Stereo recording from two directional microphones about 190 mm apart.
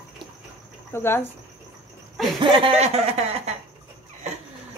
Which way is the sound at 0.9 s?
10° left (ahead or behind).